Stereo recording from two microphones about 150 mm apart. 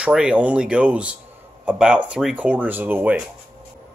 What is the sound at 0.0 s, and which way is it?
Speech, 5° right (ahead or behind).